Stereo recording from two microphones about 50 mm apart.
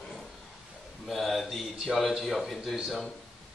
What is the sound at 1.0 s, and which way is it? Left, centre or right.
Speech, centre.